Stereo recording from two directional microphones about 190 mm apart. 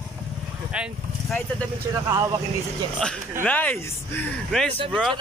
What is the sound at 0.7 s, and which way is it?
Speech, 5° right (ahead or behind).